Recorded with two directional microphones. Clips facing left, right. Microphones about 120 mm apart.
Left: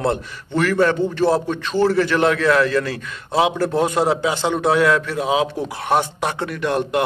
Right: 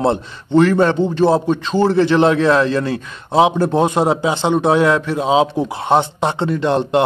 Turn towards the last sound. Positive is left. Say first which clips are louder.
# right 5 dB
turn(degrees=-25)  # may be behind; listen again after turning